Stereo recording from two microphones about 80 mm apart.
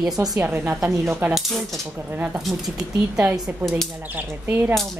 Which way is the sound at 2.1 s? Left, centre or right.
Centre.